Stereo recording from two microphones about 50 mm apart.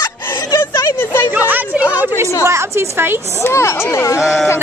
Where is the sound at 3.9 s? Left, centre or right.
Left.